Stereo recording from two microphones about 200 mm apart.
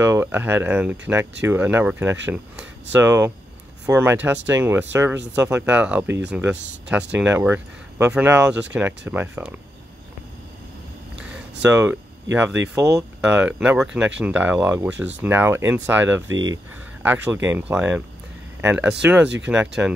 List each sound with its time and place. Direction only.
0.0 s speech: 10° right (ahead or behind)
11.6 s speech: 10° right (ahead or behind)
16.3 s speech: 70° right (ahead or behind)
17.0 s speech: 10° right (ahead or behind)